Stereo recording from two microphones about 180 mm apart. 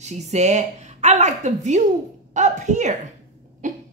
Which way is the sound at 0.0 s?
40° right (ahead or behind).